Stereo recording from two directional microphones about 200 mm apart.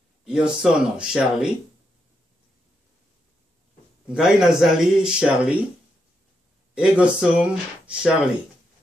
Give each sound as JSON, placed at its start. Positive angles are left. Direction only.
{"t": 0.2, "sound": "a sound", "side_deg": -5}
{"t": 0.6, "sound": "a man's voice", "side_deg": -5}
{"t": 4.1, "sound": "a man's voice", "side_deg": -5}
{"t": 6.7, "sound": "a man's voice", "side_deg": -5}